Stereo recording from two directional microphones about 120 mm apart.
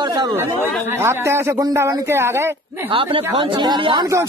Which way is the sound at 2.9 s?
50° right (ahead or behind).